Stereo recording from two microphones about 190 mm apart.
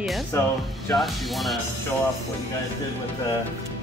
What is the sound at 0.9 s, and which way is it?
Speech, centre (ahead or behind).